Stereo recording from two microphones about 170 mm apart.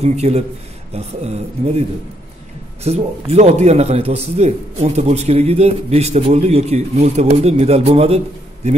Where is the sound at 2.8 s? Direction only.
40° right (ahead or behind).